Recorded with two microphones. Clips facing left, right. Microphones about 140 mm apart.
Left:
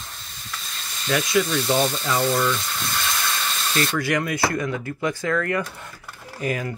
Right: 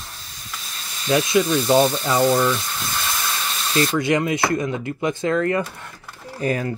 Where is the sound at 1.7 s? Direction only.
Centre (ahead or behind).